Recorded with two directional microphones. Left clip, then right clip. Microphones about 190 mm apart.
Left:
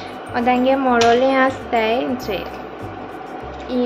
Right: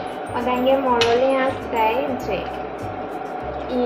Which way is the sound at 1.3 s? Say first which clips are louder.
Left 4 dB; 40° left (ahead or behind).